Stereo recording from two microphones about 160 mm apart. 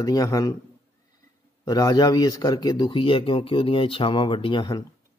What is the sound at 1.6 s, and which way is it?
A man's voice, 25° left (ahead or behind).